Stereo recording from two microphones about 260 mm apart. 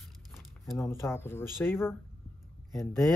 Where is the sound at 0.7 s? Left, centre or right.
Centre.